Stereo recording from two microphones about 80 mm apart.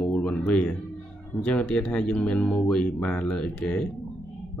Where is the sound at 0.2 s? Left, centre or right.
Centre.